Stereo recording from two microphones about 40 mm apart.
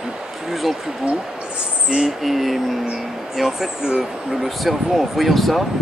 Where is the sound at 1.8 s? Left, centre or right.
Centre.